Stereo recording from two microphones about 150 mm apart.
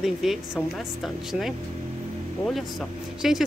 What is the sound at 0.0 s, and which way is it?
Speech, centre (ahead or behind).